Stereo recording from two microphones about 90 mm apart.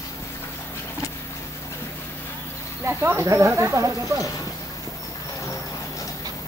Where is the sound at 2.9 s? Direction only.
25° right (ahead or behind).